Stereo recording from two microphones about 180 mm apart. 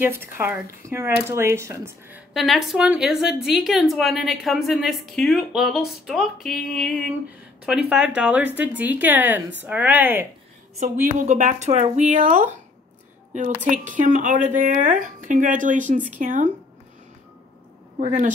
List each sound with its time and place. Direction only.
0.0 s speech: 10° right (ahead or behind)
2.3 s a woman's voice: centre (ahead or behind)
10.8 s a woman's voice: 45° right (ahead or behind)
13.7 s a woman's voice: 45° right (ahead or behind)
17.9 s a woman's voice: 40° right (ahead or behind)